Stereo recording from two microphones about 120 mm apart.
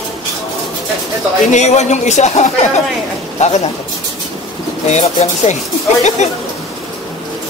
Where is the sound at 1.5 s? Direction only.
70° left (ahead or behind).